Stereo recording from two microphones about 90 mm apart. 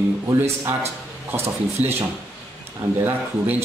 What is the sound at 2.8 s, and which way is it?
Speech, 25° right (ahead or behind).